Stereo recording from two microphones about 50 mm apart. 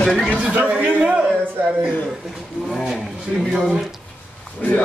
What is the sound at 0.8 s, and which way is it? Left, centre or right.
Speech, right.